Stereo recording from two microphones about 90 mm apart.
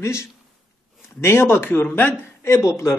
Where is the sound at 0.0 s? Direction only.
30° left (ahead or behind).